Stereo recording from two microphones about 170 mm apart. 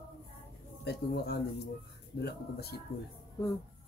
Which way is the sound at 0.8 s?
75° left (ahead or behind).